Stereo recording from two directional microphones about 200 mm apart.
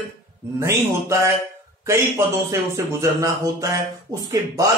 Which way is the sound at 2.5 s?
15° right (ahead or behind).